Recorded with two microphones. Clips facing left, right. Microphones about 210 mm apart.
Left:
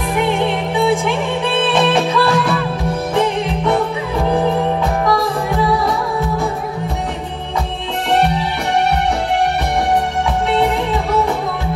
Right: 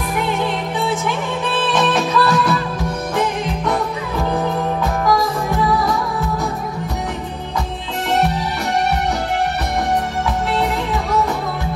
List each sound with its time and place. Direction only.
0.3 s music: 30° left (ahead or behind)